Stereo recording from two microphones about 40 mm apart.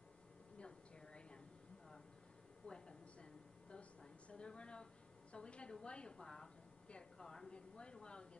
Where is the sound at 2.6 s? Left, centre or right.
Centre.